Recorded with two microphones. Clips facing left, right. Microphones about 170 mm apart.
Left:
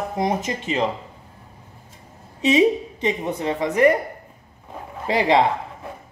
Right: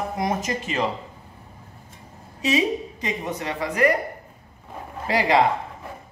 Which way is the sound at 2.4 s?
25° left (ahead or behind).